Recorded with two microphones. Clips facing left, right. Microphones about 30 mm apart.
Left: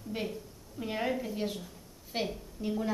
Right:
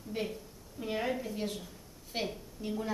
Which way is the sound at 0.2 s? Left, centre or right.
Centre.